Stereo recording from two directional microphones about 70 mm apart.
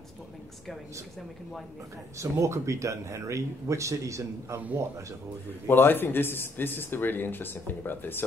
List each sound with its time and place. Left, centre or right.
2.1 s speech: right
5.7 s speech: left